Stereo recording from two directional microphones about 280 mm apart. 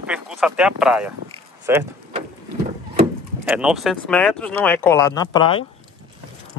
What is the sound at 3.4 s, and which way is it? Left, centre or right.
Speech, centre.